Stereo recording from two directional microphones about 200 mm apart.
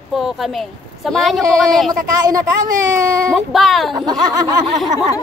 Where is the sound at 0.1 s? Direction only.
Centre (ahead or behind).